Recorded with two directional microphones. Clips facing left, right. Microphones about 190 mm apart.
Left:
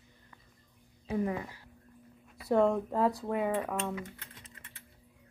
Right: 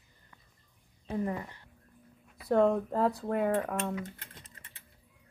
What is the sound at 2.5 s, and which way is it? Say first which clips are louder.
Speech: right 1 dB; centre (ahead or behind).